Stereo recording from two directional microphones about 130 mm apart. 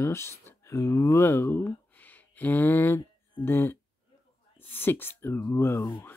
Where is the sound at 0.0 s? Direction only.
20° left (ahead or behind).